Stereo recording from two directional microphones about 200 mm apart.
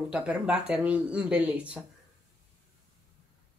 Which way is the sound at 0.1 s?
5° right (ahead or behind).